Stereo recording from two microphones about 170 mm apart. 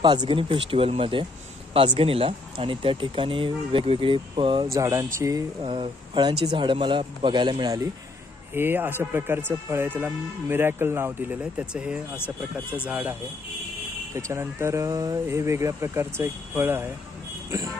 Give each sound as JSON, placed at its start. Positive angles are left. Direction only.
{"t": 0.0, "sound": "speech", "side_deg": -25}
{"t": 4.7, "sound": "speech", "side_deg": -20}
{"t": 5.6, "sound": "speech", "side_deg": -30}
{"t": 14.1, "sound": "speech", "side_deg": -15}